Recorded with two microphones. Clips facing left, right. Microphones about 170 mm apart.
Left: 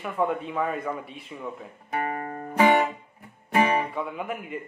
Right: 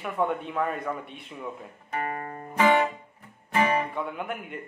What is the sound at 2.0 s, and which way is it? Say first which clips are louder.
Music: left 3 dB; 30° left (ahead or behind).